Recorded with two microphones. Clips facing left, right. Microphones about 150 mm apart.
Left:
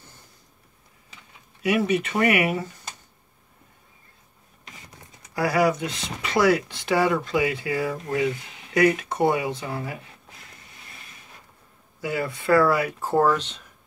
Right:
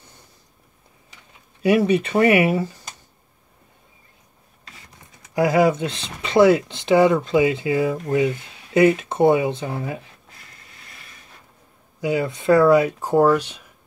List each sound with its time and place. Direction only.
1.6 s speech: 30° right (ahead or behind)
5.3 s speech: 20° right (ahead or behind)
12.0 s speech: 20° right (ahead or behind)